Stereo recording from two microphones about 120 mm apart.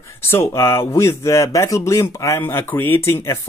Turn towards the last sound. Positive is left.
turn(degrees=20)  # may be behind; listen again after turning